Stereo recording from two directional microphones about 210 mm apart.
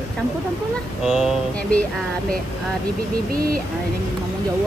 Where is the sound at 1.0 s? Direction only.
Centre (ahead or behind).